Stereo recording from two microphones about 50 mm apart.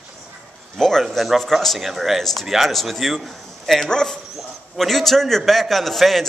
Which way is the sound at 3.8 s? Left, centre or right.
Centre.